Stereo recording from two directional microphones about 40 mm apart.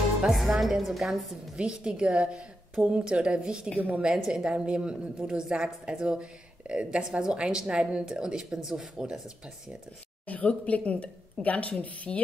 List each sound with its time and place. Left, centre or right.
0.3 s a woman's voice: centre
1.6 s a woman's voice: right
10.2 s a woman's voice: left